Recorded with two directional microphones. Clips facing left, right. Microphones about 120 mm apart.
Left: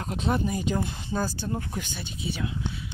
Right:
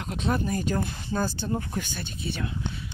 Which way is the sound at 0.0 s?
30° left (ahead or behind).